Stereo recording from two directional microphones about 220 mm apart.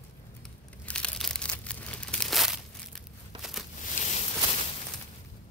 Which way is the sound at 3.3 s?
20° right (ahead or behind).